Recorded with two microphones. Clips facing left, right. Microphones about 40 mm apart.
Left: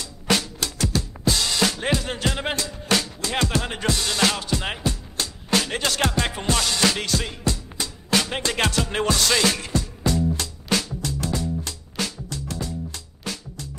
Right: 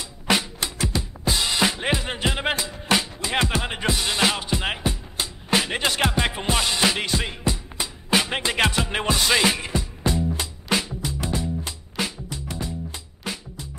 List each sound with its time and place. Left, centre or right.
0.0 s drum kit: centre
10.3 s music: centre